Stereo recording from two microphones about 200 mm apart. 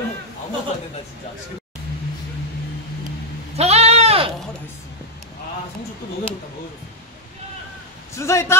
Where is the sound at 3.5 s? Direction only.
30° right (ahead or behind).